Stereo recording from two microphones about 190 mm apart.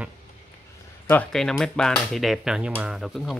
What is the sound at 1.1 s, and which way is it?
Speech, 5° left (ahead or behind).